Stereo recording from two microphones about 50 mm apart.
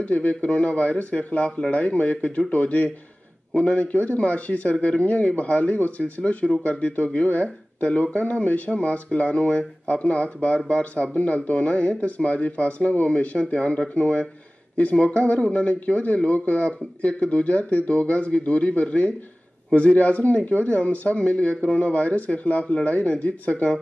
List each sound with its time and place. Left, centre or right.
0.0 s speech: left